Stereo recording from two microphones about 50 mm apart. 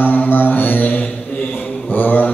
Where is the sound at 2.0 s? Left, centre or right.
Left.